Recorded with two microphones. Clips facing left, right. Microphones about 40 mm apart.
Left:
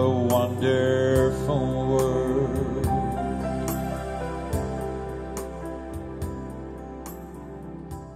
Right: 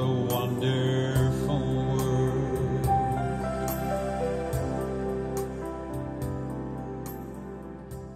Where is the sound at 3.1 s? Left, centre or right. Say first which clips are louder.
Left 2 dB; left.